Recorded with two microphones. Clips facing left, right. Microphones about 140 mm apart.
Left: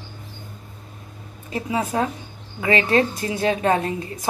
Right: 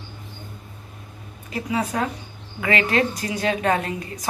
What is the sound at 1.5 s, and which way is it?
A woman's voice, 25° left (ahead or behind).